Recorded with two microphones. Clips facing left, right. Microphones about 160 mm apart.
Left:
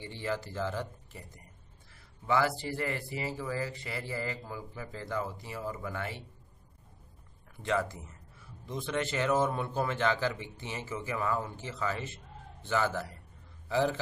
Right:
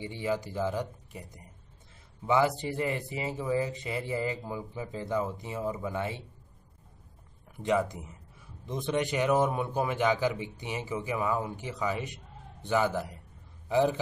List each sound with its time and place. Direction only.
0.0 s speech: 15° right (ahead or behind)
7.5 s a man's voice: 15° right (ahead or behind)